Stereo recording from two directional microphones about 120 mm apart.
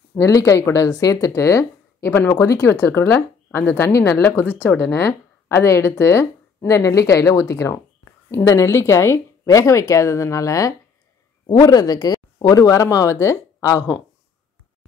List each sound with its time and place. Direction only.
0.1 s speech: 25° left (ahead or behind)
11.4 s speech: 35° left (ahead or behind)